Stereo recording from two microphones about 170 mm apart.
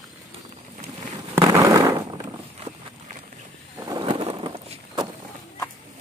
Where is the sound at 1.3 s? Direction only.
20° right (ahead or behind).